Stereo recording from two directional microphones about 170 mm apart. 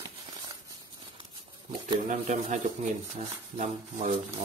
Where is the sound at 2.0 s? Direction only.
45° right (ahead or behind).